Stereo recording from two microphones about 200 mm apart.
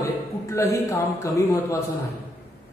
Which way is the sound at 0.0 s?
15° left (ahead or behind).